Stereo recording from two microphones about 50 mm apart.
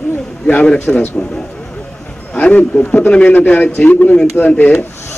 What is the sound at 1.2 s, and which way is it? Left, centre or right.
Speech, centre.